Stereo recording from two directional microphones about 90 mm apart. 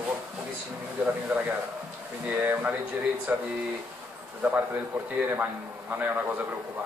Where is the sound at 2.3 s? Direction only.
25° right (ahead or behind).